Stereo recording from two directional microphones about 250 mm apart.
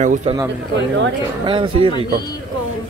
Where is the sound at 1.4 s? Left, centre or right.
Centre.